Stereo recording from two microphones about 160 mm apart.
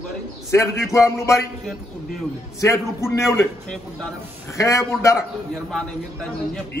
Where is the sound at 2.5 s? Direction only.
20° left (ahead or behind).